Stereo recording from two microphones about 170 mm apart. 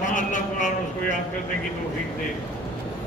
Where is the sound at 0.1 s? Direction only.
50° left (ahead or behind).